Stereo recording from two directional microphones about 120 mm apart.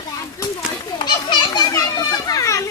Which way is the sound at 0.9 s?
40° left (ahead or behind).